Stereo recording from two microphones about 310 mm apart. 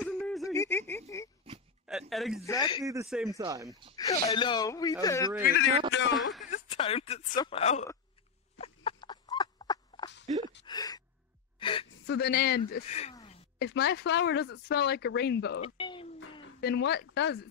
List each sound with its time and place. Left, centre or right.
0.0 s a sound: centre
2.5 s speech: centre
2.8 s speech: centre
3.9 s speech: centre
5.4 s speech: left
6.5 s speech: centre
8.5 s a sound: centre
10.6 s gasp: centre
12.1 s a man's voice: left; by 13.4 s centre
13.6 s speech: left
15.6 s a sound: centre
16.4 s speech: left